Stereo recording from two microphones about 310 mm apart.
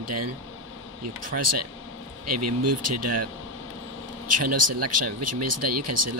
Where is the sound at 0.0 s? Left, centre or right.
Right.